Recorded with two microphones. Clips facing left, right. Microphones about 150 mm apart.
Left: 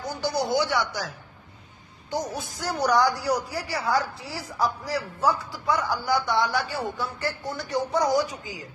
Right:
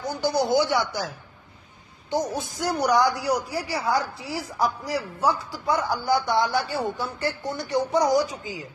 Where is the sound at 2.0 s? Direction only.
20° right (ahead or behind).